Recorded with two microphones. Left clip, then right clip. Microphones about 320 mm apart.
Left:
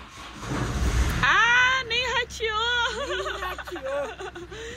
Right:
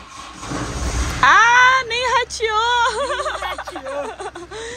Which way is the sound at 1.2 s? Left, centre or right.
Centre.